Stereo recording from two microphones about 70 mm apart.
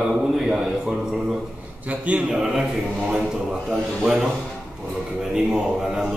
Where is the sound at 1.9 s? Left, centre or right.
Right.